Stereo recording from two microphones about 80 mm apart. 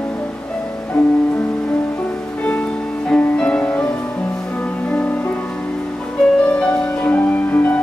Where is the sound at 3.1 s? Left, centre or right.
Centre.